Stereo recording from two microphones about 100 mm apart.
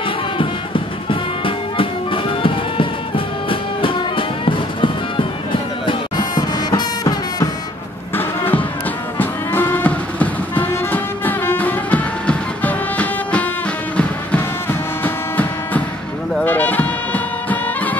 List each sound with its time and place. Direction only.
0.4 s music: 60° left (ahead or behind)
5.9 s music: 45° left (ahead or behind)
9.2 s music: 20° left (ahead or behind)